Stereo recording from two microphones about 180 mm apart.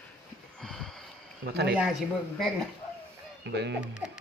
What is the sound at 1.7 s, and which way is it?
A man's voice, 5° right (ahead or behind).